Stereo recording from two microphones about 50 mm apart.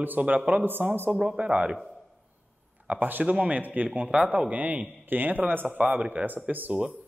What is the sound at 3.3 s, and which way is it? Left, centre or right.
Speech, right.